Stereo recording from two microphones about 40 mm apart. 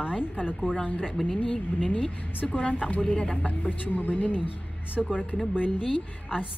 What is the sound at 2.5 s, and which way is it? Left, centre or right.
Speech, left.